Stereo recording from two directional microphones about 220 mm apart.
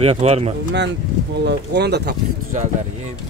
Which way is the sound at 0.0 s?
25° right (ahead or behind).